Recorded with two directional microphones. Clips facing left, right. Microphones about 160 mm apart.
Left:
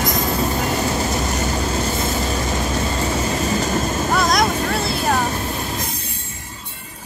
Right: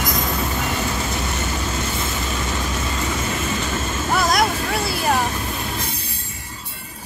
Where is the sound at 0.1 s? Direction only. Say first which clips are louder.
Left 3 dB; 35° left (ahead or behind).